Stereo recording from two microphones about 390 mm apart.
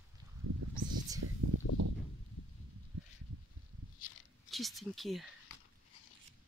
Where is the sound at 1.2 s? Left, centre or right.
Right.